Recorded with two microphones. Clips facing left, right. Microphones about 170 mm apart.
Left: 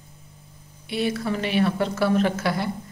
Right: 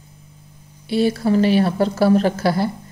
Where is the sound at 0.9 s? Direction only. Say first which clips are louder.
Right 8 dB; 35° right (ahead or behind).